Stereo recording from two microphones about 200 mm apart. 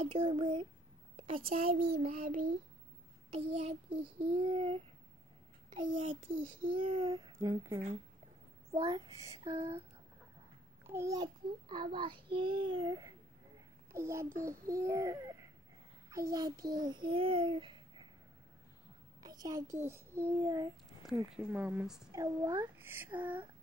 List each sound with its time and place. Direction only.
0.0 s child singing: 30° right (ahead or behind)
6.8 s a child's voice: 30° right (ahead or behind)
10.9 s a child's voice: 15° right (ahead or behind)
19.2 s a child's voice: 20° right (ahead or behind)
21.3 s a child's voice: 10° right (ahead or behind)
22.1 s a child's voice: 15° right (ahead or behind)